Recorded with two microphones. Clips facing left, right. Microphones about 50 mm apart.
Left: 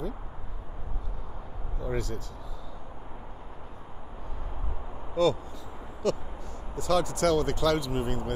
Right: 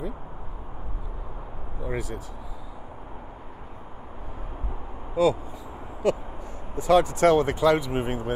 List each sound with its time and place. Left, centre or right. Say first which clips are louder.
1.8 s speech: right 1 dB; centre
5.1 s speech: right 3 dB; centre; by 8.4 s right